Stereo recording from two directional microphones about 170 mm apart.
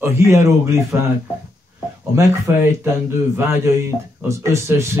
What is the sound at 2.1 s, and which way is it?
A man's voice, 15° right (ahead or behind).